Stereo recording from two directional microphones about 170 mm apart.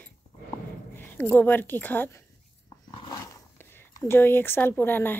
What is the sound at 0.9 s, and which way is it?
Speech, 15° left (ahead or behind).